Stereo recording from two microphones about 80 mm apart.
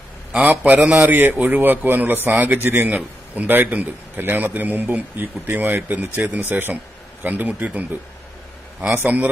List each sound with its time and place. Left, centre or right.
0.3 s a man's voice: centre
1.0 s a man's voice: right
9.0 s a man's voice: centre